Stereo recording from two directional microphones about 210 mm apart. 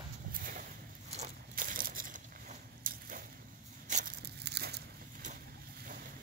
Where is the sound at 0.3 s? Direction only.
40° right (ahead or behind).